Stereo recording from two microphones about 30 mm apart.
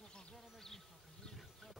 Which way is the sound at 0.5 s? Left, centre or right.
Centre.